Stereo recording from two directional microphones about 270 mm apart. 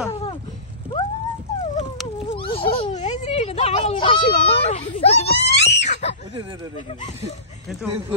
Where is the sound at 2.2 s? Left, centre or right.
Centre.